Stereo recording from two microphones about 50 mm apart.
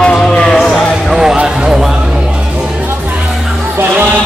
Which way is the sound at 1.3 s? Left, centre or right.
Centre.